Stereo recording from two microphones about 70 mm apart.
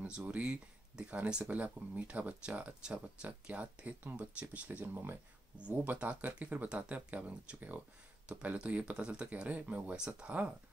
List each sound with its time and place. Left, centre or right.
0.3 s speech: centre; by 5.2 s right
5.6 s speech: centre